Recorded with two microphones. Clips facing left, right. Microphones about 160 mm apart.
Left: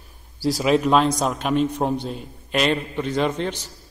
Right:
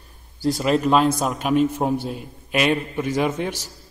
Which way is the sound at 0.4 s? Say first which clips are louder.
Left 1 dB; centre (ahead or behind).